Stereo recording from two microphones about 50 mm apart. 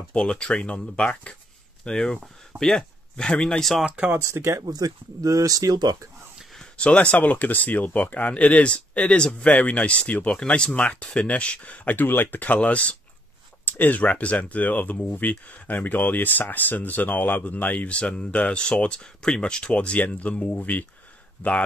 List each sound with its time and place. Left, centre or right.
0.1 s speech: left
3.8 s speech: right
4.2 s speech: right
6.8 s speech: left
7.2 s a man's voice: left